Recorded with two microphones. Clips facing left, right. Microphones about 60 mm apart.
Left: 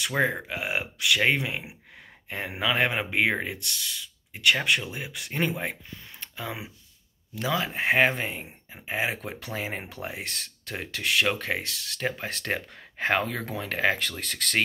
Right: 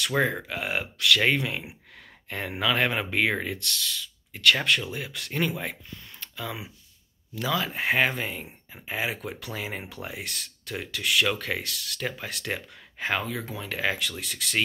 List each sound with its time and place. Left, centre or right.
0.1 s speech: centre; by 14.6 s left